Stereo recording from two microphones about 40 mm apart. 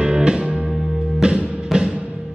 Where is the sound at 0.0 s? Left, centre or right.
Right.